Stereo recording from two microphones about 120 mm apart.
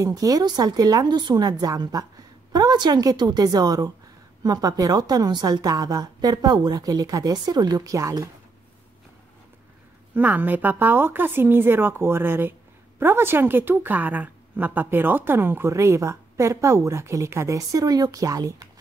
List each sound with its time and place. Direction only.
0.0 s a woman's voice: 30° right (ahead or behind)
10.1 s a woman's voice: 15° right (ahead or behind)